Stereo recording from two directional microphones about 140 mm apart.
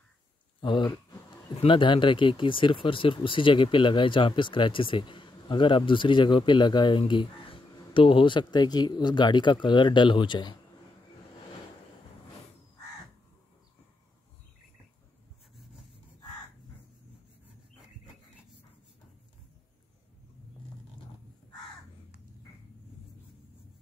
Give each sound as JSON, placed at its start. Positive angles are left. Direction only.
{"t": 0.6, "sound": "speech", "side_deg": 35}